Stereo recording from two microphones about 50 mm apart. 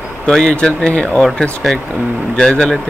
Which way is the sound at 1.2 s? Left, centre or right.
Centre.